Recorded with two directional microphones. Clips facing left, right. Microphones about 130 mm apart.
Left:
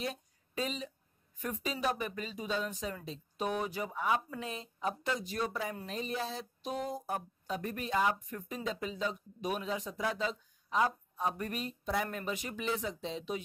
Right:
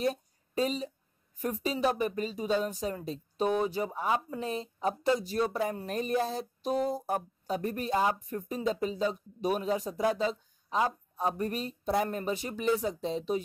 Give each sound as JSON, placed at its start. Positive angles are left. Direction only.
{"t": 0.0, "sound": "a woman's voice", "side_deg": -40}